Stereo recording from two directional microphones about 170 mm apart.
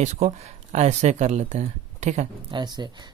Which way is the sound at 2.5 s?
25° right (ahead or behind).